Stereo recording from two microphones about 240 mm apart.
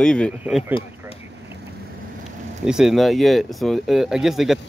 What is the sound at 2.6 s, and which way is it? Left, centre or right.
Speech, centre.